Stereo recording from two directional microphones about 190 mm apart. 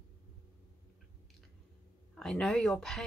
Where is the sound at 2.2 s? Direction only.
5° left (ahead or behind).